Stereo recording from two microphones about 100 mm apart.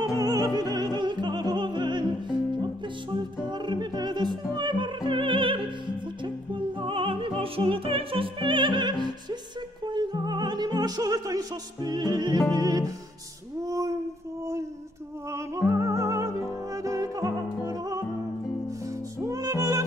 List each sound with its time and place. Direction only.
0.2 s opera: 40° right (ahead or behind)
3.4 s music: 45° right (ahead or behind)
12.4 s music: 35° left (ahead or behind)
12.6 s music: 40° right (ahead or behind)
13.7 s a sound: 35° right (ahead or behind)
15.3 s music: 30° right (ahead or behind)